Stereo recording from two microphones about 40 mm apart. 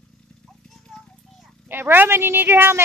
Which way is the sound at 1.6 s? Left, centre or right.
Right.